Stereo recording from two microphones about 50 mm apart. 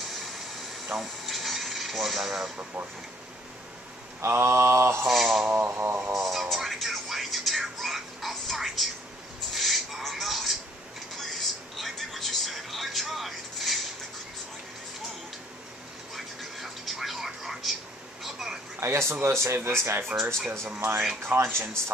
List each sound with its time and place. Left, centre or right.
0.9 s coin: centre
4.2 s speech: right
5.0 s speech: centre
5.5 s a sound: right
6.1 s speech: centre
6.5 s a sound: centre
11.1 s television: centre
16.3 s television: centre
18.2 s a sound: centre
18.8 s speech: right
21.4 s speech: right